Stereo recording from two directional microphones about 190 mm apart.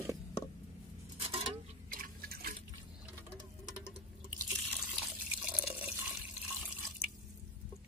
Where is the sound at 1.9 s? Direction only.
50° right (ahead or behind).